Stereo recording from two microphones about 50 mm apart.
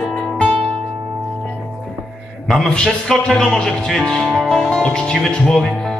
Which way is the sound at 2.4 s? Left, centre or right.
Centre.